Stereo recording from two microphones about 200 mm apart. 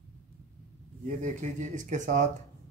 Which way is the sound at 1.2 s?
40° right (ahead or behind).